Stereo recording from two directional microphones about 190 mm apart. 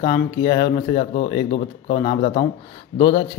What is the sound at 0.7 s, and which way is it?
Speech, 40° left (ahead or behind).